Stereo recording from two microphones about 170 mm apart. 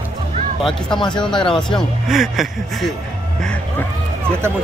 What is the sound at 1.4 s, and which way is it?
Speech, 30° left (ahead or behind).